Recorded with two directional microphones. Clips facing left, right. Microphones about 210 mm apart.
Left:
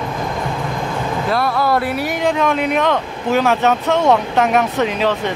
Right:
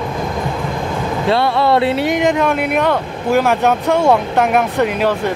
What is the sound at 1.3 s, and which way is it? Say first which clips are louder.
Speech: right 4 dB; 25° right (ahead or behind).